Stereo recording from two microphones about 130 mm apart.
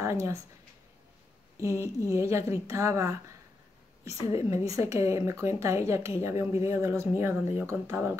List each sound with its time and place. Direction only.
0.0 s speech: 20° right (ahead or behind)
1.6 s a woman's voice: 20° right (ahead or behind)
4.4 s a woman's voice: 25° right (ahead or behind)